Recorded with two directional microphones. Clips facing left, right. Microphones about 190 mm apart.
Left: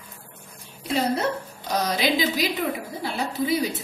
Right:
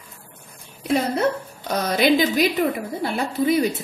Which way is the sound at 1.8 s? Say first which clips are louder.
Right 6 dB; 55° right (ahead or behind).